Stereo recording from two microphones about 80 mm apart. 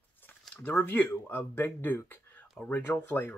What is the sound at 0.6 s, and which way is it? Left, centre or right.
Speech, left.